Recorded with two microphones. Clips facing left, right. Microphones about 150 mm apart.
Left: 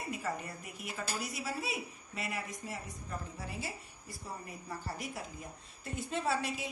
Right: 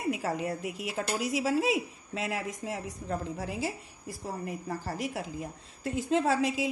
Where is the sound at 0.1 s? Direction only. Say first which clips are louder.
Right 7 dB; 90° right.